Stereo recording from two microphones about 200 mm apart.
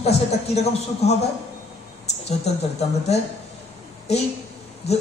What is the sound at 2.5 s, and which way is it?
Speech, 30° left (ahead or behind).